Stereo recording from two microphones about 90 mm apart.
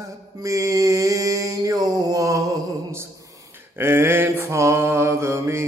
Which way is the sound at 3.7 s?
25° right (ahead or behind).